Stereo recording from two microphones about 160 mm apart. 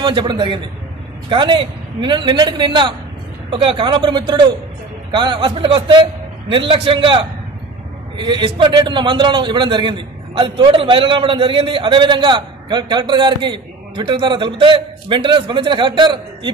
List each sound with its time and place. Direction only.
0.0 s a man's voice: 30° right (ahead or behind)